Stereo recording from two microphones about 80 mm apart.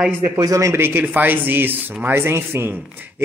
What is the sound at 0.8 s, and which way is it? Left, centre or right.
Speech, right.